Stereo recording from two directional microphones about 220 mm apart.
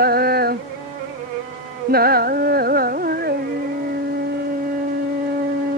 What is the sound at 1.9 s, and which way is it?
Carnatic music, 45° right (ahead or behind).